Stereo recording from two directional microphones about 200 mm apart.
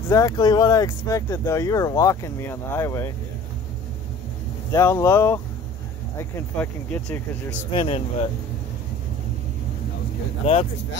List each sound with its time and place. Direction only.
0.1 s speech: 15° left (ahead or behind)
4.7 s speech: 15° left (ahead or behind)
7.7 s speech: 25° left (ahead or behind)
10.4 s speech: 30° left (ahead or behind)